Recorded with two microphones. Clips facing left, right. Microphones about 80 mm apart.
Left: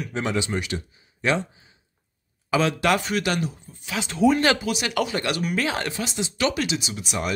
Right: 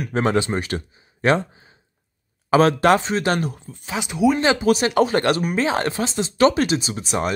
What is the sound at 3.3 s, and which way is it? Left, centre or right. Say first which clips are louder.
Speech: right 3 dB; right.